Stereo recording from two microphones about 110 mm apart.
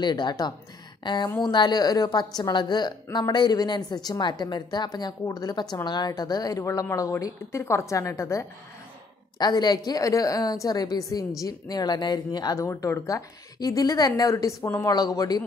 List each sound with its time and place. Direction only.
0.0 s a woman's voice: 40° left (ahead or behind)
9.4 s a woman's voice: 40° left (ahead or behind)